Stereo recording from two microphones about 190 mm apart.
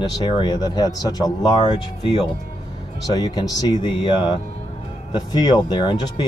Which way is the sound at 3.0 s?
20° left (ahead or behind).